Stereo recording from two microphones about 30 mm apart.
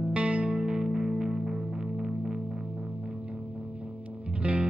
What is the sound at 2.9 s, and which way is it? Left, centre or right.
Music, right.